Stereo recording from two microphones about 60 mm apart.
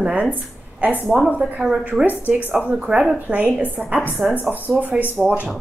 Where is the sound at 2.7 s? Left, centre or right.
Centre.